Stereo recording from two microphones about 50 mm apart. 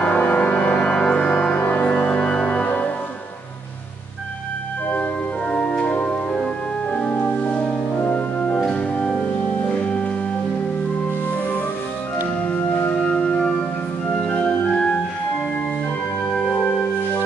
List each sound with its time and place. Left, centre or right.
0.0 s organ: left
1.7 s music: left
2.0 s organ: centre
5.5 s organ: left
5.9 s music: left
6.3 s music: centre
7.2 s music: left
8.1 s organ: left
8.9 s music: left
12.4 s music: left
14.3 s organ: left
16.3 s music: left